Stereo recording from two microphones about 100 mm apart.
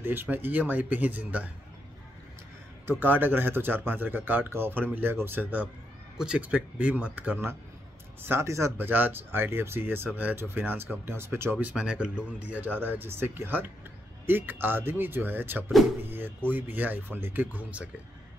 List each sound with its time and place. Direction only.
0.0 s speech: 20° right (ahead or behind)
2.9 s speech: 20° right (ahead or behind)